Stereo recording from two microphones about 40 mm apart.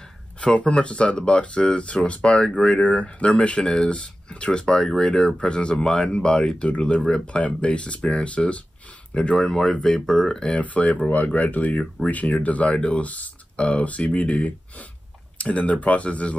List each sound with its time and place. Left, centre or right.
0.6 s speech: left
9.3 s speech: centre
10.6 s speech: left
12.6 s speech: left